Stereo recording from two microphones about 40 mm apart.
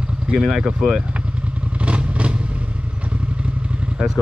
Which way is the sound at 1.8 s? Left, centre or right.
Right.